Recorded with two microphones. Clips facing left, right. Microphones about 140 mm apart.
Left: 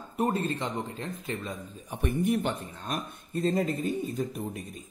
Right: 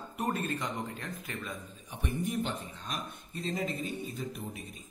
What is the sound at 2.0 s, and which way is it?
A man's voice, 65° left (ahead or behind).